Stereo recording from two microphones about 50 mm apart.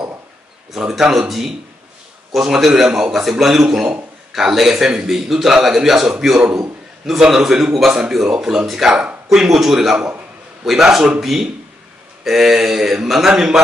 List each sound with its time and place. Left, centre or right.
0.7 s a man's voice: centre
2.3 s a man's voice: centre
8.9 s speech: centre
9.4 s a man's voice: centre